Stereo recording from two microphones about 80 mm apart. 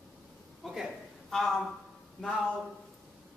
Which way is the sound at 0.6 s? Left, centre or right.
Centre.